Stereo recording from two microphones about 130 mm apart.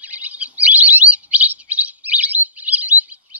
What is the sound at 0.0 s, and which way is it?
Chirp, 10° right (ahead or behind).